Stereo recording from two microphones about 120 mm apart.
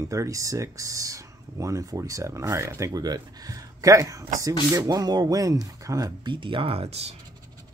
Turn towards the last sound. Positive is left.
turn(degrees=-60)  # may be behind; listen again after turning